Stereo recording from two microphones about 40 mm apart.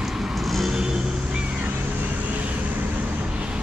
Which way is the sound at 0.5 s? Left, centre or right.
Centre.